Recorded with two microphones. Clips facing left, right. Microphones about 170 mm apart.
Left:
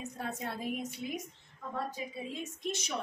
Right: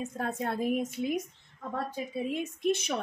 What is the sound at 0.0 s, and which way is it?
Speech, 50° right (ahead or behind).